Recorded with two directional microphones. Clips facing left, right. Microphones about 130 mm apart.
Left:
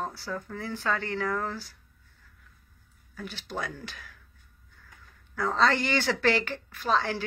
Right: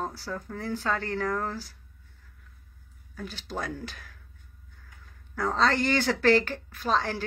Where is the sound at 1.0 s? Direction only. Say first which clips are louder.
Right 1 dB; 45° right (ahead or behind).